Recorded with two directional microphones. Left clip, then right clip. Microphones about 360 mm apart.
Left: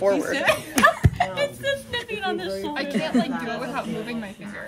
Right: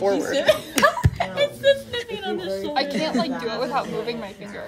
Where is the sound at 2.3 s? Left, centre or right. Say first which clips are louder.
Right 3 dB; centre.